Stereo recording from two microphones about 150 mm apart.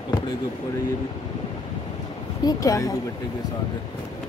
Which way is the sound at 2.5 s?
25° left (ahead or behind).